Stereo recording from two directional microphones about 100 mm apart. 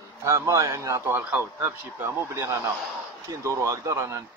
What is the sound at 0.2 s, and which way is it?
Speech, 30° right (ahead or behind).